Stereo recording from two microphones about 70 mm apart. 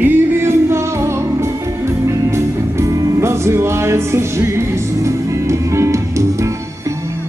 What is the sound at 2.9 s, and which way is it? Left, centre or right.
Music, right.